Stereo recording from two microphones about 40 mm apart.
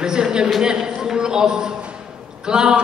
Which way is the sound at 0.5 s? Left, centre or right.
Centre.